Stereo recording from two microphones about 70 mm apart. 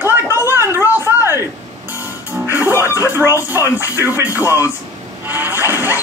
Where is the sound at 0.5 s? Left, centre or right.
Right.